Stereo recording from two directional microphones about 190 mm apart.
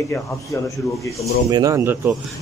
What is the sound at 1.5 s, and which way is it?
Speech, 15° right (ahead or behind).